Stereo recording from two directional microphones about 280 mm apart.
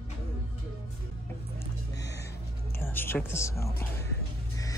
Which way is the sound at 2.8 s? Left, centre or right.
Centre.